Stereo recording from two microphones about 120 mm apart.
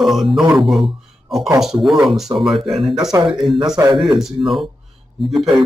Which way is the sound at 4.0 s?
5° right (ahead or behind).